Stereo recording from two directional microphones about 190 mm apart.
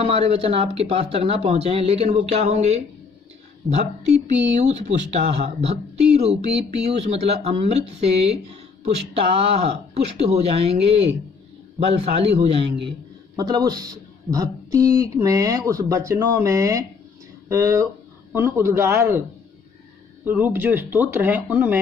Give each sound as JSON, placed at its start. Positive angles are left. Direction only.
{"t": 0.0, "sound": "a woman's voice", "side_deg": -30}
{"t": 20.2, "sound": "a woman's voice", "side_deg": -10}